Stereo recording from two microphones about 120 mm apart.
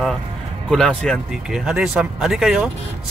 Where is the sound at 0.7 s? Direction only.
5° left (ahead or behind).